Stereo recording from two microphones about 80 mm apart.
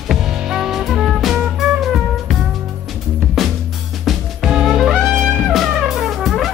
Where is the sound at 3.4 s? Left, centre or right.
Centre.